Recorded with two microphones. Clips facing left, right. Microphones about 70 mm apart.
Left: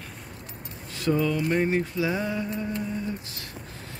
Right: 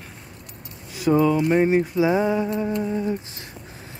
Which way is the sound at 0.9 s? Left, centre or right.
Centre.